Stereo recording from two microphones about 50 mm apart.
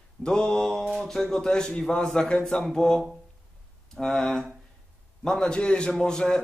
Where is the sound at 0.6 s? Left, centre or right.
Centre.